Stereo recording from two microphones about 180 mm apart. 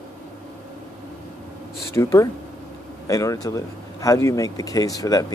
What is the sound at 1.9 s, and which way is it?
Speech, 15° left (ahead or behind).